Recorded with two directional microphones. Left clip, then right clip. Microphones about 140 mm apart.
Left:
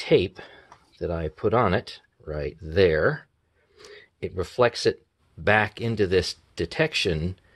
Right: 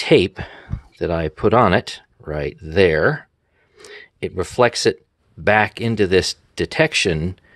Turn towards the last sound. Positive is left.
turn(degrees=-50)  # may be behind; listen again after turning